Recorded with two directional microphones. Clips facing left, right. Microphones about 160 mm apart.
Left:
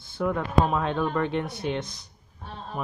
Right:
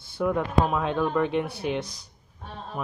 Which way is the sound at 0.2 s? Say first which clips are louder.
Even; 10° right (ahead or behind).